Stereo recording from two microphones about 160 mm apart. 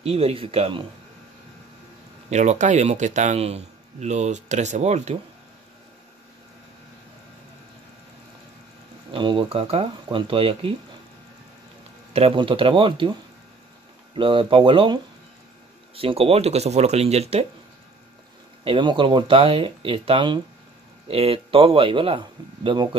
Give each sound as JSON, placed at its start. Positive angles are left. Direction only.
{"t": 0.0, "sound": "speech", "side_deg": -40}
{"t": 2.2, "sound": "speech", "side_deg": -45}
{"t": 9.1, "sound": "speech", "side_deg": -30}
{"t": 12.1, "sound": "speech", "side_deg": -35}
{"t": 14.1, "sound": "speech", "side_deg": -30}
{"t": 18.6, "sound": "speech", "side_deg": -30}